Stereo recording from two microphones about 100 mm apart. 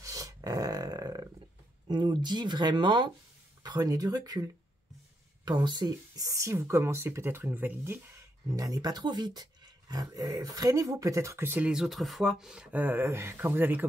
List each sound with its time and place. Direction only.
0.0 s a sound: 35° right (ahead or behind)
1.9 s speech: 50° right (ahead or behind)
3.6 s speech: 40° right (ahead or behind); by 8.0 s 20° right (ahead or behind)
8.5 s speech: 35° right (ahead or behind); by 11.7 s 20° right (ahead or behind)
11.7 s speech: centre (ahead or behind)
12.7 s speech: 20° right (ahead or behind)